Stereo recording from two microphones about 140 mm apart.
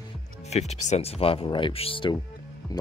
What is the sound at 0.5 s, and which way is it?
Speech, 50° left (ahead or behind).